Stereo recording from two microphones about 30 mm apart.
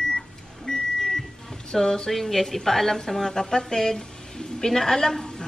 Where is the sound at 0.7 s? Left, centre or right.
Centre.